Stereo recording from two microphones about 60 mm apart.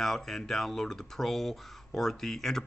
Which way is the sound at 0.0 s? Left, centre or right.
Centre.